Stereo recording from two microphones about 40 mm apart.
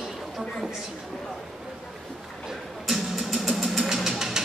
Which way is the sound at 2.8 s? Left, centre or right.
Centre.